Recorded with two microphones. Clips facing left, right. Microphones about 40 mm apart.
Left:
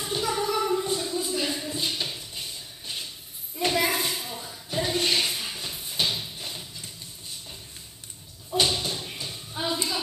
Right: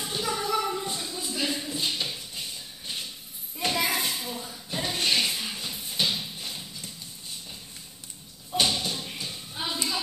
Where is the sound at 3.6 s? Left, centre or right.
Left.